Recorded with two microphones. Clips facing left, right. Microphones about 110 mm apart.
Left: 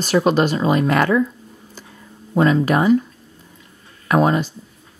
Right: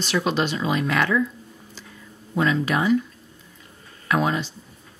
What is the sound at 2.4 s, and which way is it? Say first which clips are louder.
Speech: left 6 dB; 45° left (ahead or behind).